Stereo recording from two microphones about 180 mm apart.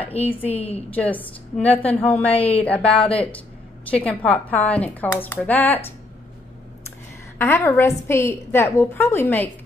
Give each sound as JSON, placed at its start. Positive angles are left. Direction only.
{"t": 0.3, "sound": "a woman's voice", "side_deg": 10}
{"t": 0.6, "sound": "a woman's voice", "side_deg": 35}
{"t": 0.9, "sound": "a woman's voice", "side_deg": 10}
{"t": 2.3, "sound": "a woman's voice", "side_deg": 35}
{"t": 2.6, "sound": "a woman's voice", "side_deg": 5}
{"t": 7.3, "sound": "a woman's voice", "side_deg": 15}